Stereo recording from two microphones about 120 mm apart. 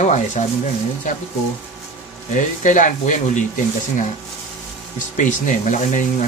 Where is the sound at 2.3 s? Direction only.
90° left.